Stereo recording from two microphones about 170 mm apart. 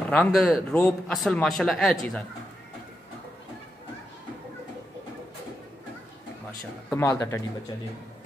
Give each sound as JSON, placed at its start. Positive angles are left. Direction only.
{"t": 0.1, "sound": "a man's voice", "side_deg": 5}
{"t": 6.9, "sound": "speech", "side_deg": 15}